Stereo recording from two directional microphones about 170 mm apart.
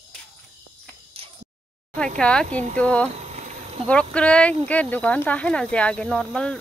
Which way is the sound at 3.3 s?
40° right (ahead or behind).